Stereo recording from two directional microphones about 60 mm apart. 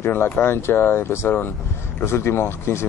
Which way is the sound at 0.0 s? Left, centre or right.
Left.